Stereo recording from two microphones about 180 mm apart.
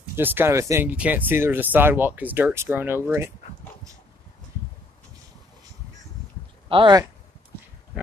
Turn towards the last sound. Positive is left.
turn(degrees=-25)  # may be behind; listen again after turning